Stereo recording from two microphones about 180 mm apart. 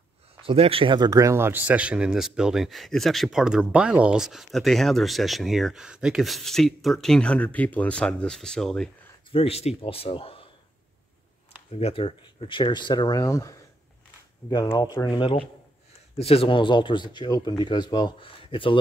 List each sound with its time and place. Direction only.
0.4 s speech: 30° right (ahead or behind); by 8.9 s 5° left (ahead or behind)
9.3 s a man's voice: 35° left (ahead or behind)
11.7 s speech: 30° left (ahead or behind)